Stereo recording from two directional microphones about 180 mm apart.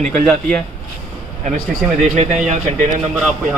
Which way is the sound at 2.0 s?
40° right (ahead or behind).